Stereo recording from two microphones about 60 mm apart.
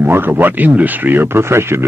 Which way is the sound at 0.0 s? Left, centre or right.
Right.